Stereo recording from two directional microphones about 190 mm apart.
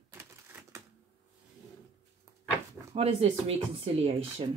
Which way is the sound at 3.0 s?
30° right (ahead or behind).